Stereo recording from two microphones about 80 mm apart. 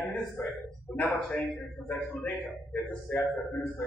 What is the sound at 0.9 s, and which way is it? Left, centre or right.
Speech, centre.